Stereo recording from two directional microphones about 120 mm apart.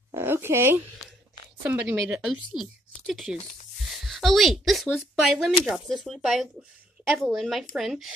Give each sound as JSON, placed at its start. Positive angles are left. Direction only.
{"t": 0.1, "sound": "a sound", "side_deg": -20}
{"t": 1.7, "sound": "speech", "side_deg": -15}
{"t": 2.5, "sound": "a woman's voice", "side_deg": 0}